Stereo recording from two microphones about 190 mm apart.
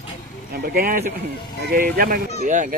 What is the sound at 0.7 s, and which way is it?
Speech, 50° right (ahead or behind).